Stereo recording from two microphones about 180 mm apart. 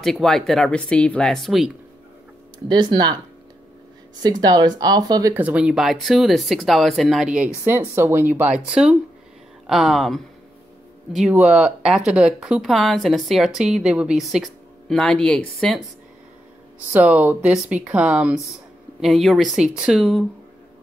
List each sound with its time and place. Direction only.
0.0 s speech: centre (ahead or behind)
2.7 s speech: 25° right (ahead or behind)
4.2 s speech: 20° right (ahead or behind)
5.3 s speech: 10° right (ahead or behind)
16.9 s speech: 10° right (ahead or behind)